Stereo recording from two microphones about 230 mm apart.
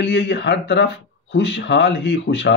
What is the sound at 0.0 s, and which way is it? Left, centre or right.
Speech, left.